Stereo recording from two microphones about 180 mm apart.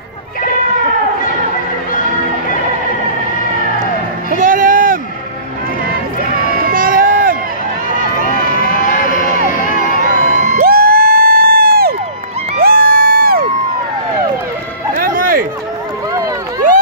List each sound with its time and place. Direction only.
4.3 s a sound: 50° right (ahead or behind)
6.7 s run: 50° right (ahead or behind)
8.3 s crowd: 50° left (ahead or behind)
10.0 s music: 45° right (ahead or behind)
15.0 s music: 50° right (ahead or behind)
16.1 s run: 20° right (ahead or behind)